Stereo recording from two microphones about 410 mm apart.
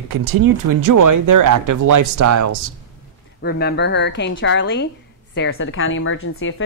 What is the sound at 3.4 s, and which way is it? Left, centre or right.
Speech, left.